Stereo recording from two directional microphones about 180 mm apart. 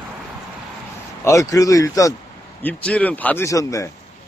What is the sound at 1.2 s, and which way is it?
Speech, 15° left (ahead or behind).